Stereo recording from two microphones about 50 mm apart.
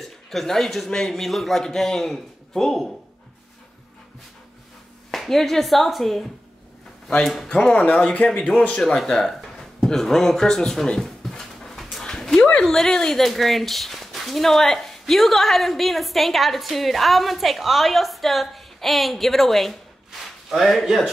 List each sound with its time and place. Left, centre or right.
0.0 s a man's voice: centre
5.1 s speech: centre
7.4 s speech: centre
8.9 s a sound: centre
12.6 s speech: centre